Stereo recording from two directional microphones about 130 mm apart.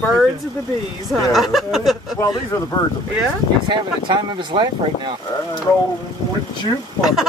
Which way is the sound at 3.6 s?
35° right (ahead or behind).